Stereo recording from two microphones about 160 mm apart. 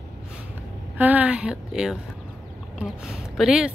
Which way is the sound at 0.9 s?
10° right (ahead or behind).